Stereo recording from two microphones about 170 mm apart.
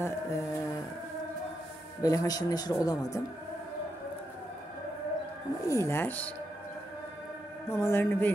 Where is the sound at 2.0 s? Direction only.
20° left (ahead or behind).